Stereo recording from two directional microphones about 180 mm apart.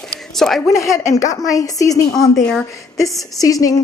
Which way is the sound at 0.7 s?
15° left (ahead or behind).